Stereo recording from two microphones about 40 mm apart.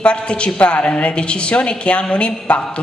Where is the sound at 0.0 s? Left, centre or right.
Left.